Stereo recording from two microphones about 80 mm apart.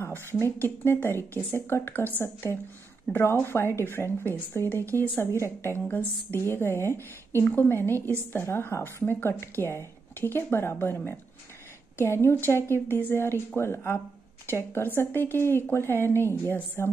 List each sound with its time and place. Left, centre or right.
0.0 s a woman's voice: left